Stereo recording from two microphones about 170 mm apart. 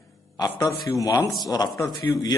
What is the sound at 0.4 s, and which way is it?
A man's voice, 20° left (ahead or behind).